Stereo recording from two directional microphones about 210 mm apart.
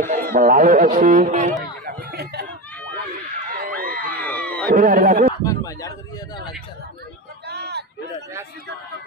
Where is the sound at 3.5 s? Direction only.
45° right (ahead or behind).